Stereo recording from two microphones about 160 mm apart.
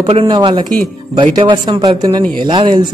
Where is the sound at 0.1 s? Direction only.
35° right (ahead or behind).